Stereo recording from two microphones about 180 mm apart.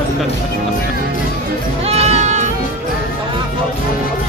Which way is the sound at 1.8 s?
35° right (ahead or behind).